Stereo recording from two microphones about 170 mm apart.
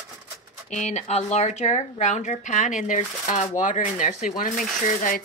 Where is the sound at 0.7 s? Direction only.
40° left (ahead or behind).